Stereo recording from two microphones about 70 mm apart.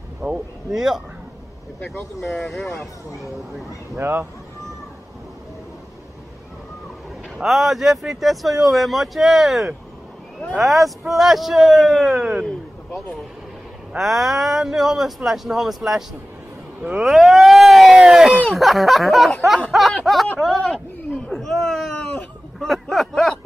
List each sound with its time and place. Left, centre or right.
0.2 s speech: centre
4.0 s speech: right
7.3 s speech: centre
13.9 s speech: centre
17.0 s a sound: centre
18.0 s speech: centre
21.3 s a sound: centre